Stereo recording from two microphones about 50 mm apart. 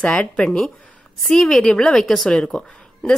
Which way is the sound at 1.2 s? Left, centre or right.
Centre.